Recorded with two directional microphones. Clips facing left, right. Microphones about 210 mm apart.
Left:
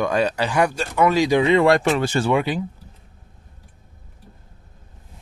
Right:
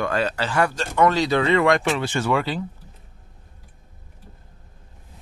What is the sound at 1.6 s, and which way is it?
Speech, 40° left (ahead or behind).